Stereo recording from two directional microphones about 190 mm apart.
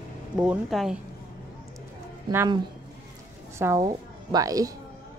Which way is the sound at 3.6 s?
15° right (ahead or behind).